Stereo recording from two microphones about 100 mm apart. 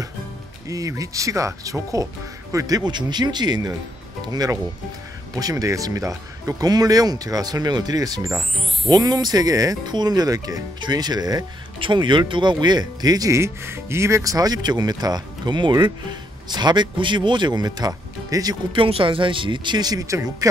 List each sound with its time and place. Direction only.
0.7 s speech: 35° right (ahead or behind)
5.3 s speech: 35° right (ahead or behind)
8.8 s speech: 45° right (ahead or behind)
11.8 s speech: 50° right (ahead or behind)
18.7 s speech: 60° right (ahead or behind); by 20.4 s 35° right (ahead or behind)